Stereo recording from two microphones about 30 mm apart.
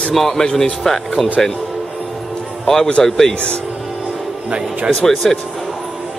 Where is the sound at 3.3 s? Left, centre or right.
Left.